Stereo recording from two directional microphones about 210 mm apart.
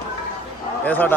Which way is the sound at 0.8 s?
10° left (ahead or behind).